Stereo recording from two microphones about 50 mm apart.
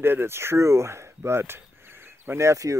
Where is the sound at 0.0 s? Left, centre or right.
Right.